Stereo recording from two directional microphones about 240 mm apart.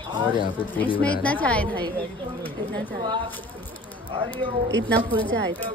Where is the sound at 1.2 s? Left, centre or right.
Centre.